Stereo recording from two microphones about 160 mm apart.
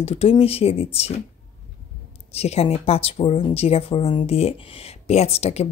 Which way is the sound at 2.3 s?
40° left (ahead or behind).